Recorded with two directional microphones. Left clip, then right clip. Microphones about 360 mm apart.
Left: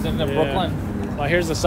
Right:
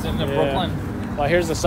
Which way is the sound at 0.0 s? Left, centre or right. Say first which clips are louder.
Even; centre.